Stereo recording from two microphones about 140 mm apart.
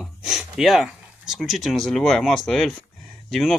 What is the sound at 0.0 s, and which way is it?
Speech, centre (ahead or behind).